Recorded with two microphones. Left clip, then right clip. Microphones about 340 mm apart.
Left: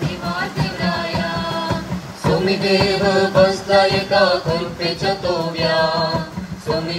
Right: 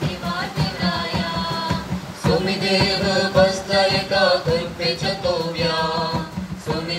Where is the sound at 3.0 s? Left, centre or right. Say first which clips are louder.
Left 3 dB; left.